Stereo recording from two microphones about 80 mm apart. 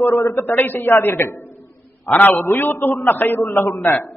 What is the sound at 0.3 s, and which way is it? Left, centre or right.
A man's voice, left.